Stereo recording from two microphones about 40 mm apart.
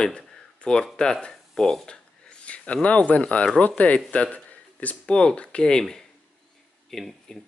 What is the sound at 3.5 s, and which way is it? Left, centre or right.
Speech, left.